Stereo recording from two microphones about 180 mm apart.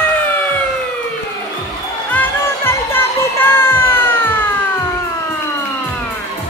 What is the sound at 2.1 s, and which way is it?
Music, 10° left (ahead or behind).